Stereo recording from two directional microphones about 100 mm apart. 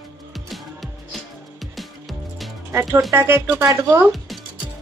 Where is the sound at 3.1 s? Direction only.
20° right (ahead or behind).